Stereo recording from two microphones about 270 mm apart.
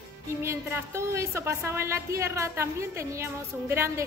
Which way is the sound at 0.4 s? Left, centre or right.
Centre.